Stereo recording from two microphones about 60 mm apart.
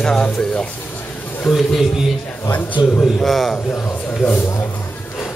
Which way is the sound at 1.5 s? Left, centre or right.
Centre.